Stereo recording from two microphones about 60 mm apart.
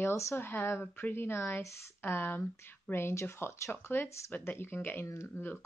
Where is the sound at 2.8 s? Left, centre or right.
Left.